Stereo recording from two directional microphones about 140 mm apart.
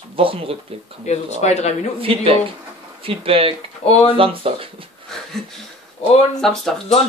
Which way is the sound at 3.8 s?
50° left (ahead or behind).